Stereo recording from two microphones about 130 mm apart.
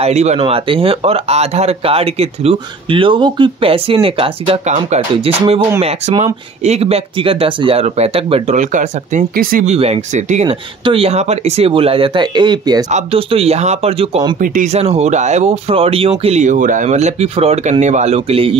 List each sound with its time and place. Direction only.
0.0 s speech: 55° right (ahead or behind)
0.4 s speech: 45° right (ahead or behind)
8.5 s speech: 75° right (ahead or behind)
9.8 s speech: 60° right (ahead or behind); by 12.8 s 35° right (ahead or behind)
12.9 s speech: 50° right (ahead or behind)
14.4 s speech: 80° right; by 18.6 s 45° right (ahead or behind)